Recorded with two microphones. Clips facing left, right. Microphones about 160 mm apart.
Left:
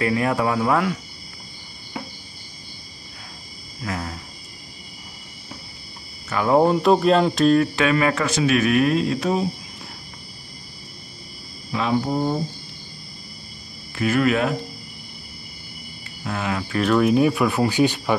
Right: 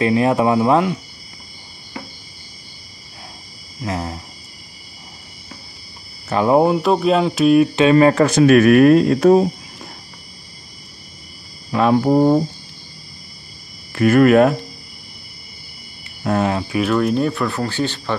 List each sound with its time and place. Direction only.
0.0 s speech: 20° right (ahead or behind)
3.8 s speech: 25° right (ahead or behind)
6.2 s speech: 30° right (ahead or behind)
6.5 s speech: 5° right (ahead or behind)
7.9 s speech: 35° right (ahead or behind)
8.4 s speech: 55° right (ahead or behind)
11.7 s speech: 50° right (ahead or behind)
12.0 s speech: 70° right (ahead or behind)
13.9 s speech: 55° right (ahead or behind)
16.3 s speech: 45° right (ahead or behind)
16.7 s speech: centre (ahead or behind); by 18.1 s 15° left (ahead or behind)